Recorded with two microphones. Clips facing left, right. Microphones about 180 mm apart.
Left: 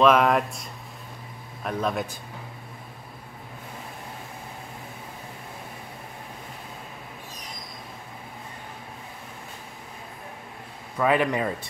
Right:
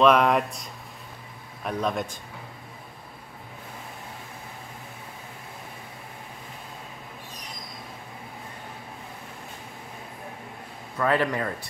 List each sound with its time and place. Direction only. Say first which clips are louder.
0.0 s speech: even; centre (ahead or behind)
11.0 s a man's voice: left 2 dB; 15° left (ahead or behind)